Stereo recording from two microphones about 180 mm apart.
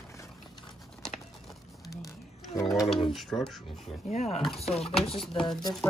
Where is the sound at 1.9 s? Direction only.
20° left (ahead or behind).